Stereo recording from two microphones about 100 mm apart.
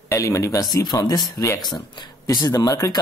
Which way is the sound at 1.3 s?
30° left (ahead or behind).